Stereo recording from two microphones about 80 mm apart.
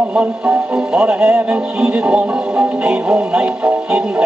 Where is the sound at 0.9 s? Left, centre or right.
Centre.